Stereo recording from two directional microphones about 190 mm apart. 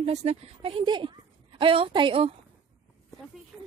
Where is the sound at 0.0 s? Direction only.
35° right (ahead or behind).